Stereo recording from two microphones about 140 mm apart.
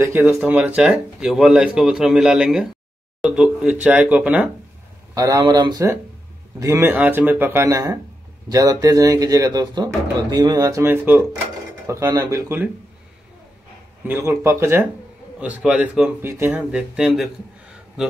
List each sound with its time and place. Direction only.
0.0 s speech: 15° right (ahead or behind)
5.1 s a man's voice: 25° right (ahead or behind)
14.0 s a man's voice: 20° right (ahead or behind)